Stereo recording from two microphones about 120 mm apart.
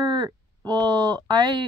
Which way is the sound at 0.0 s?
40° right (ahead or behind).